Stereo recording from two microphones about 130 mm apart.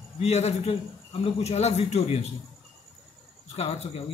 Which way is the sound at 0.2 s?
55° left (ahead or behind).